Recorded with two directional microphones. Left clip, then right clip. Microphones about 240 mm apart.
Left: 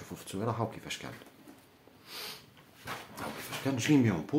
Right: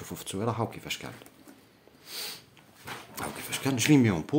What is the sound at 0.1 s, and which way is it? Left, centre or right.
Speech, right.